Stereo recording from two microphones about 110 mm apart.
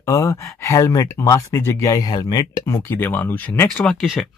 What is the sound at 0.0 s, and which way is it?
Speech, 30° left (ahead or behind).